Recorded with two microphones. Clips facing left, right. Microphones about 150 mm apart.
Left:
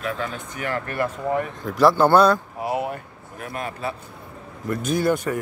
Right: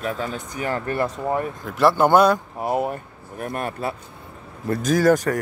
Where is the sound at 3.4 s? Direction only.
50° right (ahead or behind).